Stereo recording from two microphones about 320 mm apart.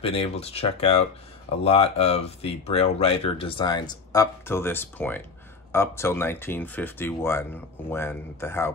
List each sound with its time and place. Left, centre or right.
0.0 s speech: centre